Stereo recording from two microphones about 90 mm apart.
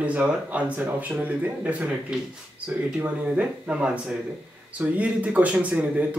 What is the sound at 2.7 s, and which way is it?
Speech, 15° right (ahead or behind).